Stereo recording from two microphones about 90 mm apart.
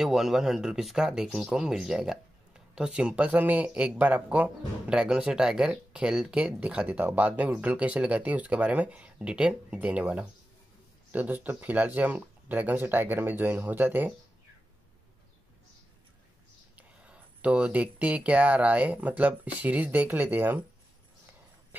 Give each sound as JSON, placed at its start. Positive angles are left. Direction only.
{"t": 0.0, "sound": "speech", "side_deg": -5}
{"t": 16.7, "sound": "speech", "side_deg": -15}